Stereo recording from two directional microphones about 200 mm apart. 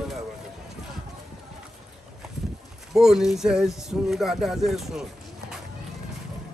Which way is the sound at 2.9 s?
Centre (ahead or behind).